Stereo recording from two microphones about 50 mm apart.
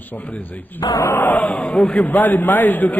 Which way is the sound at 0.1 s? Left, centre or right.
Left.